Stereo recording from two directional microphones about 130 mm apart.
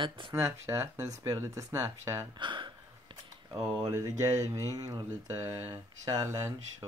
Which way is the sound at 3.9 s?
25° right (ahead or behind).